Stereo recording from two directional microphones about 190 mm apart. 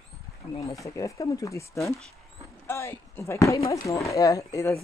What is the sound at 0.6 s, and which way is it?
Speech, 15° left (ahead or behind).